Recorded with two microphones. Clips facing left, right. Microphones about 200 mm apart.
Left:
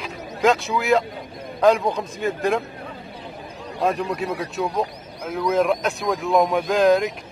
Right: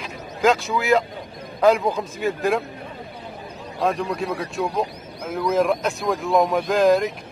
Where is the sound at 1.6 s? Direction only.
Centre (ahead or behind).